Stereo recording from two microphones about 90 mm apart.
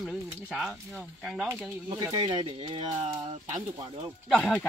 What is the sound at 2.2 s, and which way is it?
Speech, 55° right (ahead or behind).